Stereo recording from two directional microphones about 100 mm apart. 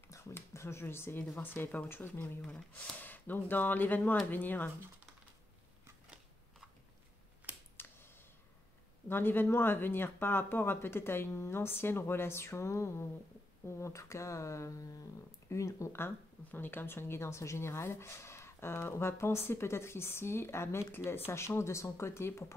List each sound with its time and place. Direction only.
0.1 s speech: 25° left (ahead or behind)
7.7 s a sound: 20° left (ahead or behind)
9.1 s speech: 20° left (ahead or behind)